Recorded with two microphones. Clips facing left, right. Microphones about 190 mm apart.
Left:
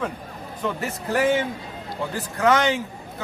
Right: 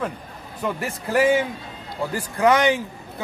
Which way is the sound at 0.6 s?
10° right (ahead or behind).